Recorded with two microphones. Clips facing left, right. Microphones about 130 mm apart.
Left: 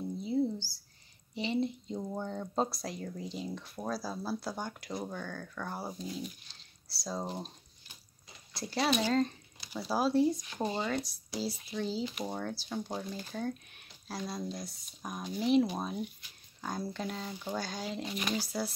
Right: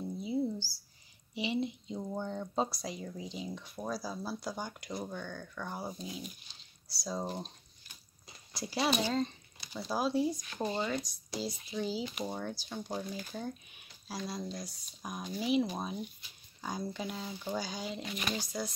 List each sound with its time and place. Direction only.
0.0 s a sound: 5° right (ahead or behind)
1.3 s speech: 5° right (ahead or behind)
6.0 s speech: 10° right (ahead or behind)
6.9 s speech: centre (ahead or behind)
8.5 s speech: centre (ahead or behind)
10.6 s speech: 15° left (ahead or behind)
10.9 s speech: centre (ahead or behind)